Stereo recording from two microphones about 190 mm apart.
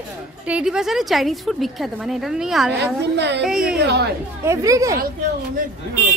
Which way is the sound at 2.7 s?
65° right (ahead or behind).